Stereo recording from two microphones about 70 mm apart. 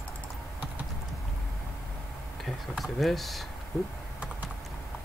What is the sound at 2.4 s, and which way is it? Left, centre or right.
Speech, centre.